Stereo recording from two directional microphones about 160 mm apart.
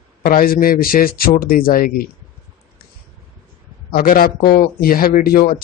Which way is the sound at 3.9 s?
60° left (ahead or behind).